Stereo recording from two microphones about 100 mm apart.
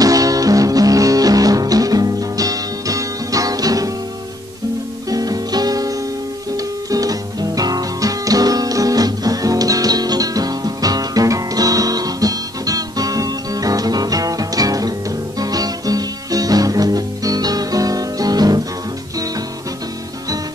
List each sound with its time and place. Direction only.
0.0 s music: 35° right (ahead or behind)
5.1 s music: 40° right (ahead or behind)